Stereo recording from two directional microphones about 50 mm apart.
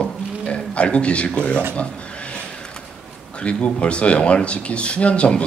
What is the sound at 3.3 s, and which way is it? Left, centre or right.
Speech, left.